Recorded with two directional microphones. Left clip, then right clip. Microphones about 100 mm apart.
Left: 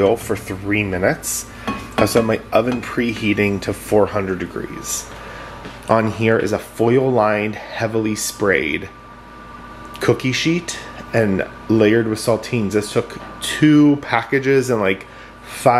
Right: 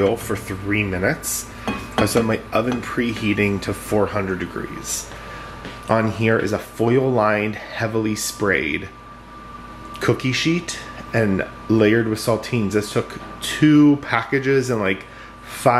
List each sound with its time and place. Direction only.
0.0 s speech: 20° left (ahead or behind)
0.7 s speech: 30° left (ahead or behind)
5.9 s speech: 20° left (ahead or behind)
9.9 s speech: 20° left (ahead or behind)